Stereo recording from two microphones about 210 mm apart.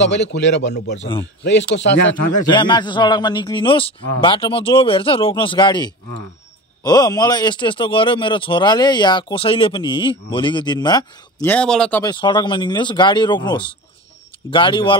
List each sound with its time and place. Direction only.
0.1 s a man's voice: 55° left (ahead or behind)
2.4 s speech: 20° left (ahead or behind)
11.5 s speech: 5° left (ahead or behind)
12.0 s speech: 20° left (ahead or behind)